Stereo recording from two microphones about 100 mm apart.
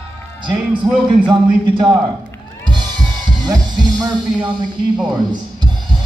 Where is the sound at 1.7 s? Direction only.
55° right (ahead or behind).